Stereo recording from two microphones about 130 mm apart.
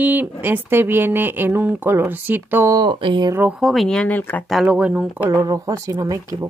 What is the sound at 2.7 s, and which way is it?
Speech, 35° right (ahead or behind).